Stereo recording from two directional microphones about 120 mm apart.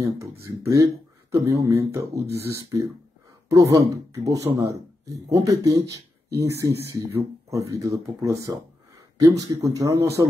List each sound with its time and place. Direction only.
0.0 s speech: 25° right (ahead or behind)